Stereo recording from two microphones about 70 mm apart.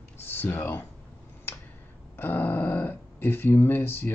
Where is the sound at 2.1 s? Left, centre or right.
Left.